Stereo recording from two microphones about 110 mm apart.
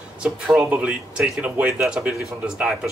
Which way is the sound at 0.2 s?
10° right (ahead or behind).